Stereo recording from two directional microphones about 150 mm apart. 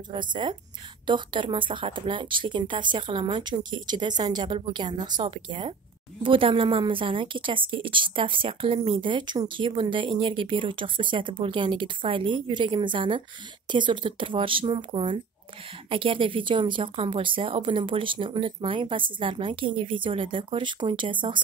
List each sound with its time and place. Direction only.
0.1 s a woman's voice: 30° right (ahead or behind)